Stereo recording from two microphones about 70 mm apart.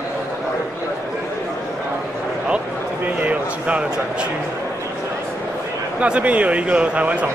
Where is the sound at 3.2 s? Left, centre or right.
Centre.